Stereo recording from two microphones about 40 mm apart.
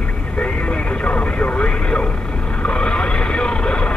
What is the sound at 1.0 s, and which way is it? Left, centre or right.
Radio, left.